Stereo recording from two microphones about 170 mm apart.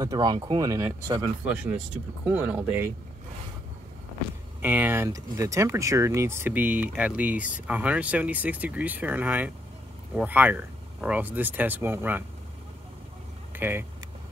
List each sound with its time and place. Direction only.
0.0 s speech: 25° right (ahead or behind)
1.4 s speech: 5° right (ahead or behind)
4.6 s speech: 10° right (ahead or behind)
13.6 s speech: 10° right (ahead or behind)